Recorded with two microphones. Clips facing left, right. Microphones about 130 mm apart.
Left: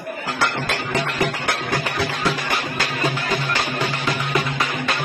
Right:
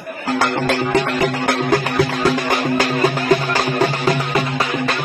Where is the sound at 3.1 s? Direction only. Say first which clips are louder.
Right 7 dB; 40° right (ahead or behind).